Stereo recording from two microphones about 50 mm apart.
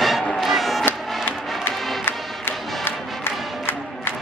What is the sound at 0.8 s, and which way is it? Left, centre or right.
Music, left.